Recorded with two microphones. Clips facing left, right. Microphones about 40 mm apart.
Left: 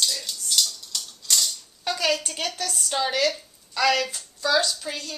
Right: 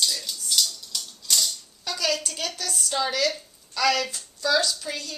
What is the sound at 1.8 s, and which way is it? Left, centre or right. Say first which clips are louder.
A woman's voice: left 3 dB; left.